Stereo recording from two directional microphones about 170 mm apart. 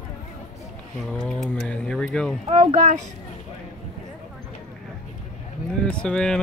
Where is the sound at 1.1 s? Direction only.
5° left (ahead or behind).